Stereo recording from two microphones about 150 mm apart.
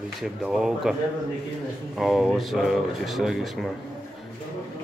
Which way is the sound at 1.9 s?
Centre (ahead or behind).